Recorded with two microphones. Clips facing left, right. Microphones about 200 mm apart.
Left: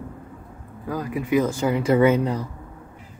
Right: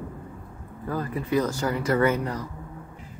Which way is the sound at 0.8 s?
15° left (ahead or behind).